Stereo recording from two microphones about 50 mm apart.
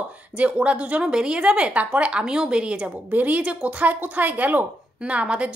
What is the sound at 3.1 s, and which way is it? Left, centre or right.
A woman's voice, right.